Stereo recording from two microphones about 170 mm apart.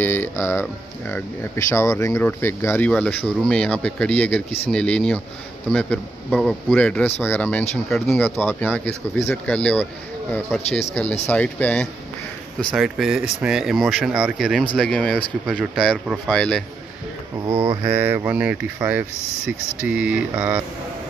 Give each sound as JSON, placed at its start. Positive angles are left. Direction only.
{"t": 0.0, "sound": "speech", "side_deg": 15}
{"t": 11.2, "sound": "speech", "side_deg": 10}
{"t": 17.5, "sound": "speech", "side_deg": -20}